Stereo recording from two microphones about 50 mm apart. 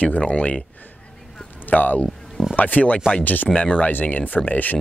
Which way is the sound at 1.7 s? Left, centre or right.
Left.